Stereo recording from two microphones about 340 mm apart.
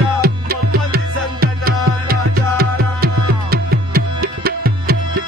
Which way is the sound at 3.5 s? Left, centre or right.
Right.